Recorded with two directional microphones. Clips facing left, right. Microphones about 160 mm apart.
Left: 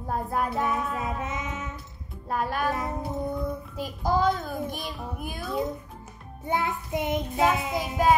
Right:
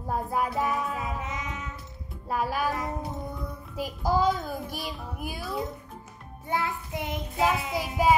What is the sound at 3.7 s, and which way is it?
Speech, 10° right (ahead or behind).